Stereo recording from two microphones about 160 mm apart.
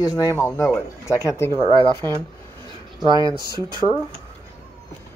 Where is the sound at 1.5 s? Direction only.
25° right (ahead or behind).